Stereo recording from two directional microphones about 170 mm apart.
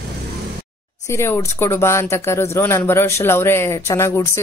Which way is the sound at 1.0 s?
15° left (ahead or behind).